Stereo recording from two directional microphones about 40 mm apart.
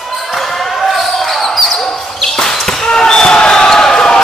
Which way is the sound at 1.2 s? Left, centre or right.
Centre.